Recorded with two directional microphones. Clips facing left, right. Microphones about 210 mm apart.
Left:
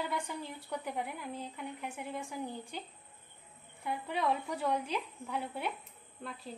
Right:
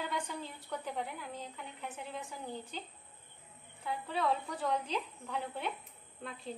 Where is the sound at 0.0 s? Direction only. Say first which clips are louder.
Left 1 dB; 10° left (ahead or behind).